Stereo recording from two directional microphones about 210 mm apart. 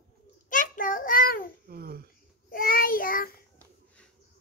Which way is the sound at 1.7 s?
45° right (ahead or behind).